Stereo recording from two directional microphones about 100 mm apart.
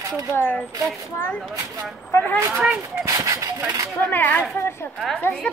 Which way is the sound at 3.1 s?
35° right (ahead or behind).